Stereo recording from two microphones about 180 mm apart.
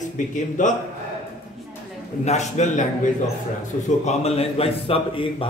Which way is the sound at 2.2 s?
40° left (ahead or behind).